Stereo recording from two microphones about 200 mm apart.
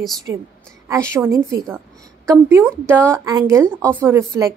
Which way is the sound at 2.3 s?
15° right (ahead or behind).